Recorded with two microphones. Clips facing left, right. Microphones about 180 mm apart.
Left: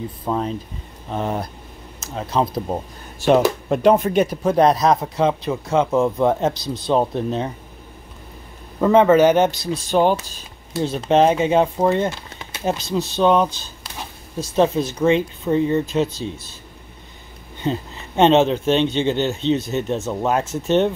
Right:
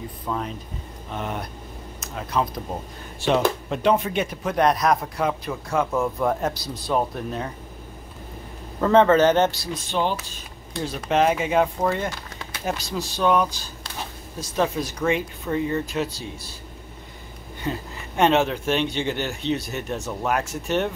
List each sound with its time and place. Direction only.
0.3 s speech: 35° left (ahead or behind)
3.2 s speech: 50° left (ahead or behind); by 7.4 s 25° left (ahead or behind)
8.8 s speech: 10° left (ahead or behind)
9.8 s speech: 45° left (ahead or behind)
10.8 s speech: 25° left (ahead or behind)
17.6 s speech: 25° left (ahead or behind)